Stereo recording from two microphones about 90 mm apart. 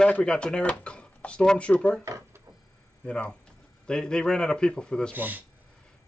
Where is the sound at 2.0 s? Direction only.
35° right (ahead or behind).